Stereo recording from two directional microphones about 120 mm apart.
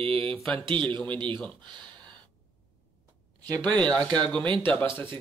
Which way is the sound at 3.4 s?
35° right (ahead or behind).